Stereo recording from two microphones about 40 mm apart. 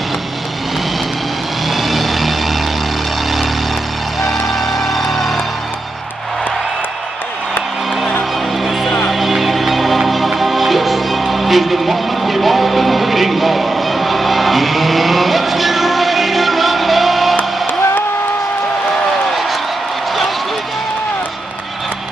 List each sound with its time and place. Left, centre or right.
1.7 s vehicle: centre
4.2 s music: centre
9.1 s music: centre
17.4 s music: left